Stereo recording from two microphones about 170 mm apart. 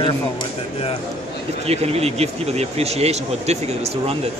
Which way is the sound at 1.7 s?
35° right (ahead or behind).